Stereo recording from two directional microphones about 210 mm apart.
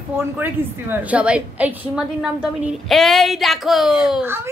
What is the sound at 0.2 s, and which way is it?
A woman's voice, 10° right (ahead or behind).